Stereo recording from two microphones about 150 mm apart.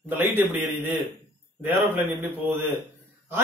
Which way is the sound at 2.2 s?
15° right (ahead or behind).